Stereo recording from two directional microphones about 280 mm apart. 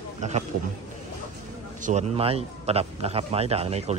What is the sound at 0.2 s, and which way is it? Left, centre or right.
Speech, right.